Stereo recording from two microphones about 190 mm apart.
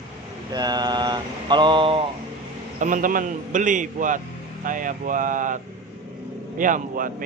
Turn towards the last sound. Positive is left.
turn(degrees=-45)  # may be behind; listen again after turning